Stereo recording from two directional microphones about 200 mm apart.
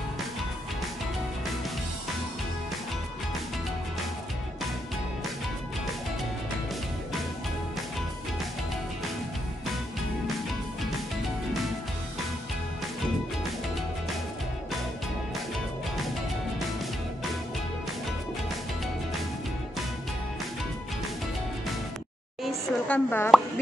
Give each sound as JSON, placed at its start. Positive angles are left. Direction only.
{"t": 22.4, "sound": "plop", "side_deg": 5}